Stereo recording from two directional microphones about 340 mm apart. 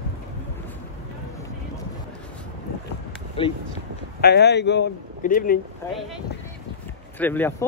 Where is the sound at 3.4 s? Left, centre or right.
Centre.